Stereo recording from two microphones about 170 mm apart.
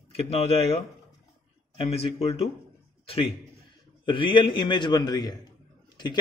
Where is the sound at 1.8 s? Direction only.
35° left (ahead or behind).